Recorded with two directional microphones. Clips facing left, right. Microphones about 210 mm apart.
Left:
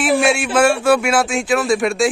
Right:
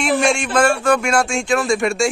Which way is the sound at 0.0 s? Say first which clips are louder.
Left 2 dB; 5° left (ahead or behind).